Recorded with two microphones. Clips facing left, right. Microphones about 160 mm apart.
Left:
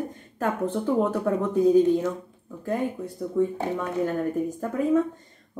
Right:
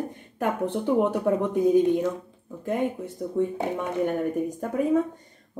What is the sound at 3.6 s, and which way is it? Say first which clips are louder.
Speech: even; 20° right (ahead or behind).